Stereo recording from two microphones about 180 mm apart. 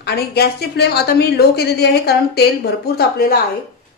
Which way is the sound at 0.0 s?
60° left (ahead or behind).